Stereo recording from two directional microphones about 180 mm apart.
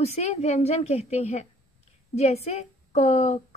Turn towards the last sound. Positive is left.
turn(degrees=40)  # may be behind; listen again after turning